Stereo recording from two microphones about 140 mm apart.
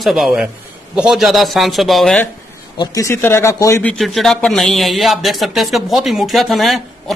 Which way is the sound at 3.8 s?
5° left (ahead or behind).